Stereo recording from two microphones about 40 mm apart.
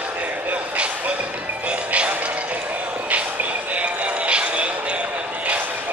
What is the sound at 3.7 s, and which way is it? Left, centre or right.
Music, right.